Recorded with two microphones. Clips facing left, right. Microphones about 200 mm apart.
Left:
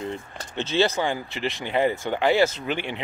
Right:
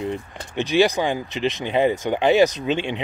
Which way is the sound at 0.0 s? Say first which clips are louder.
Right 4 dB; 15° right (ahead or behind).